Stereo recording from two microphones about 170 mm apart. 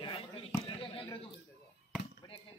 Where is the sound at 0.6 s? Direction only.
35° left (ahead or behind).